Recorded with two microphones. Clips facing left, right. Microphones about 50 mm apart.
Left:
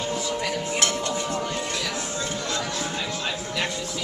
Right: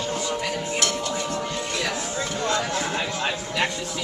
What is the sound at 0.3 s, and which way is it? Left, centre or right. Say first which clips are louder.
Music: even; centre.